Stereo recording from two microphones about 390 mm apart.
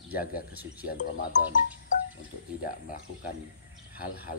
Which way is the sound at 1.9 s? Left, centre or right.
Centre.